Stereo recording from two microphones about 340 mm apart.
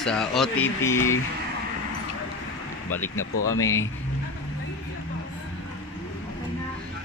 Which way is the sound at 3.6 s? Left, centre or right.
Centre.